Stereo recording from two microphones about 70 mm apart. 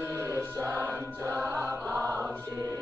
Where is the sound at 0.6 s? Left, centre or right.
Right.